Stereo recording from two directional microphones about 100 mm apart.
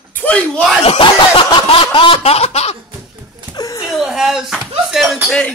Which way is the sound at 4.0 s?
5° right (ahead or behind).